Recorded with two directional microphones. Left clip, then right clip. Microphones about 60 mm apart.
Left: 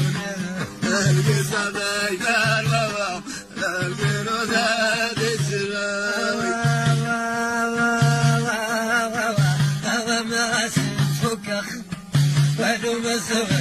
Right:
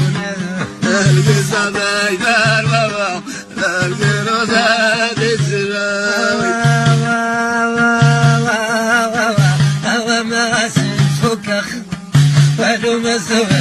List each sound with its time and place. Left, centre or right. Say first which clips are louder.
1.5 s music: right 8 dB; left
4.3 s music: right 8 dB; left
12.1 s music: right 8 dB; left